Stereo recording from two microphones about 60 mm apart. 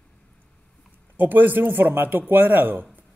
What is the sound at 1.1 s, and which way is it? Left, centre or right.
Speech, right.